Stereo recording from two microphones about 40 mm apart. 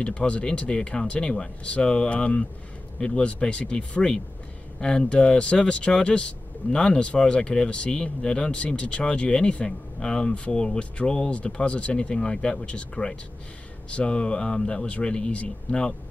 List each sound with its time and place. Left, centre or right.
0.0 s speech: left